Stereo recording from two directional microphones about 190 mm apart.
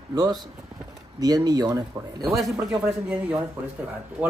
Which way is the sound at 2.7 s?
5° right (ahead or behind).